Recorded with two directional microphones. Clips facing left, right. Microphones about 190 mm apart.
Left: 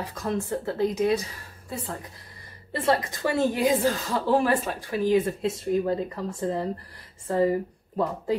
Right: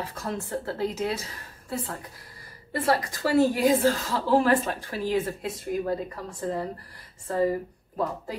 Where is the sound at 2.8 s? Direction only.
20° left (ahead or behind).